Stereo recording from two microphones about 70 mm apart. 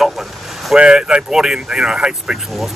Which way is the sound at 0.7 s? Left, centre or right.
Centre.